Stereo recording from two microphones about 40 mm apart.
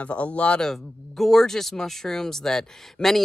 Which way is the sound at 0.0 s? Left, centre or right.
Left.